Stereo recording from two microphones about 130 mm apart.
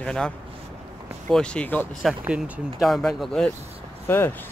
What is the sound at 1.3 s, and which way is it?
Speech, 5° left (ahead or behind).